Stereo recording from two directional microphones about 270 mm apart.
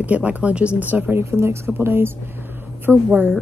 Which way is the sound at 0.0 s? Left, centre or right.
Centre.